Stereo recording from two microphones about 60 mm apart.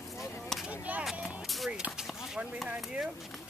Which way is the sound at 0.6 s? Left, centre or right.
Right.